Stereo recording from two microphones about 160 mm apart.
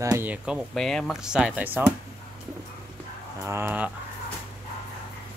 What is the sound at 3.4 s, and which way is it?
Speech, 15° right (ahead or behind).